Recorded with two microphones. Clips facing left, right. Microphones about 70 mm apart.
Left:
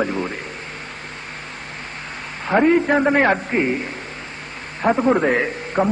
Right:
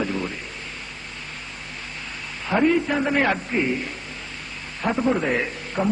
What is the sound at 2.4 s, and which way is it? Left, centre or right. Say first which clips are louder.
A man's voice: left 4 dB; left.